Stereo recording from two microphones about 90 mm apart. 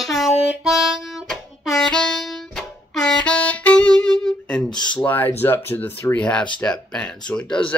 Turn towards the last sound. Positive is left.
turn(degrees=10)  # may be behind; listen again after turning